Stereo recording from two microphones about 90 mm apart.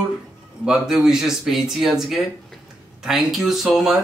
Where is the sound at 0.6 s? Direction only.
5° right (ahead or behind).